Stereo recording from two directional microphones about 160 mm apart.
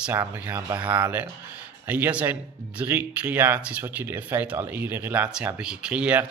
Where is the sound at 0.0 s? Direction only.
10° right (ahead or behind).